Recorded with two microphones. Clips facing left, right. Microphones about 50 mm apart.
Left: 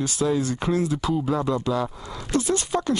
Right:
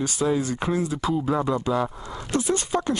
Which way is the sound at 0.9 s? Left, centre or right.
Centre.